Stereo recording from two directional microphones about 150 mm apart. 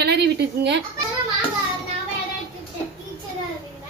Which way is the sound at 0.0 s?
90° right.